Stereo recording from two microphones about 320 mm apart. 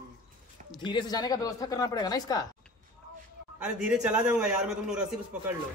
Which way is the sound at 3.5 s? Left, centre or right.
Centre.